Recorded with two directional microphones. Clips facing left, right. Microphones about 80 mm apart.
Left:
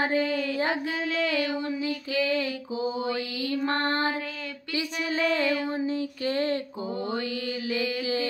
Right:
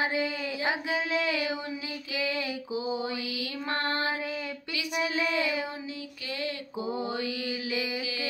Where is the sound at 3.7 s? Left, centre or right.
Left.